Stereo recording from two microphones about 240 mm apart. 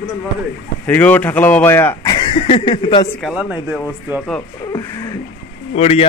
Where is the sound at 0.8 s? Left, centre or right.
Centre.